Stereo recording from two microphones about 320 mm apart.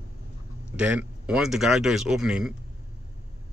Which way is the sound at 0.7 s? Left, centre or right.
Centre.